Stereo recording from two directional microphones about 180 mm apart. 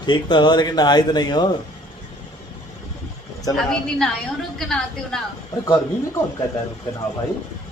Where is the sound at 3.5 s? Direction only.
5° left (ahead or behind).